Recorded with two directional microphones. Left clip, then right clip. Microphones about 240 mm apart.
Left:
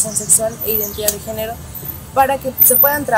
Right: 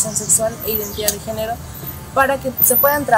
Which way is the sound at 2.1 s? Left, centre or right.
Centre.